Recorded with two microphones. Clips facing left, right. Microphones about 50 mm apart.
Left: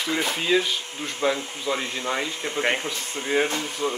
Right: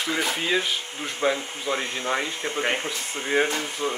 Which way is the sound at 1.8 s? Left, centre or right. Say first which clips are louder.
Right 1 dB; right.